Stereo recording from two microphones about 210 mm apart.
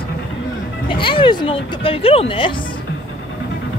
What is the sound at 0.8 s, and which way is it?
Speech, 25° left (ahead or behind).